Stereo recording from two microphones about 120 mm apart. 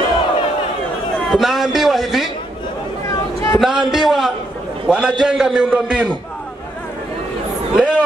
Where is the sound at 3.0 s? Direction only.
25° left (ahead or behind).